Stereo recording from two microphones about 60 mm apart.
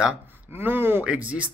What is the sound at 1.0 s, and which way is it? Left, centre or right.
Speech, right.